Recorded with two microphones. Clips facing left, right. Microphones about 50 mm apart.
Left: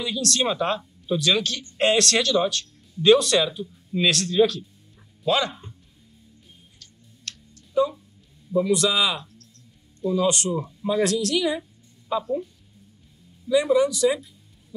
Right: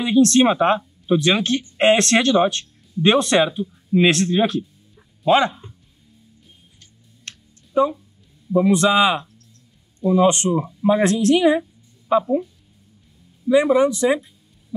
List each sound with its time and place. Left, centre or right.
0.0 s speech: right
6.8 s a sound: right
8.5 s speech: right
13.5 s speech: right